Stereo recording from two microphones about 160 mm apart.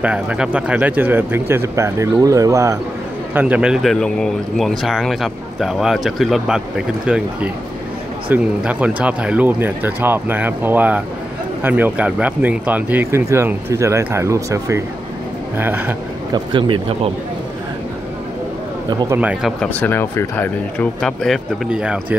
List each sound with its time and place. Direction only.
0.0 s speech: 5° right (ahead or behind)
3.3 s speech: 10° right (ahead or behind)
16.5 s speech: 30° right (ahead or behind)
19.1 s speech: 10° right (ahead or behind)
19.6 s speech: 10° left (ahead or behind)